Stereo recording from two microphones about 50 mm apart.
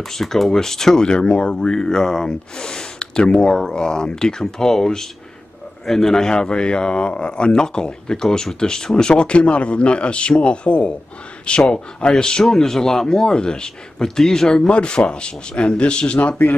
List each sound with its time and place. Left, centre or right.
0.0 s speech: centre
14.7 s speech: centre